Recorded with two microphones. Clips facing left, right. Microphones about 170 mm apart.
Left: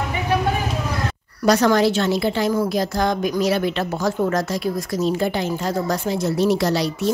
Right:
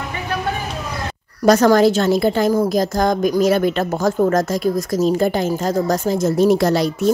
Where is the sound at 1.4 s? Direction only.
45° right (ahead or behind).